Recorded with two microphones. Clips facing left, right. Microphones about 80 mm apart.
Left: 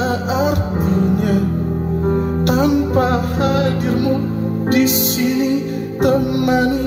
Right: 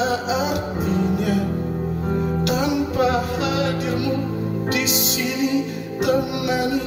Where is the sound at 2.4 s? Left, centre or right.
Left.